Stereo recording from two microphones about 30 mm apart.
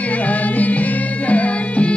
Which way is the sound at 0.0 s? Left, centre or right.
Left.